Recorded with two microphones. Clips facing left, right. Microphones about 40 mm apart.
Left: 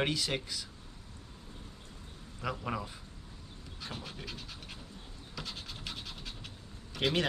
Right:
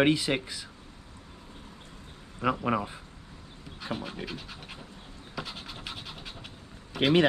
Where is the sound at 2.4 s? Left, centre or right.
Right.